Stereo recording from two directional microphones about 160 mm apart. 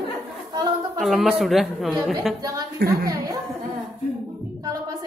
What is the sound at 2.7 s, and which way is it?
Speech, 70° right (ahead or behind).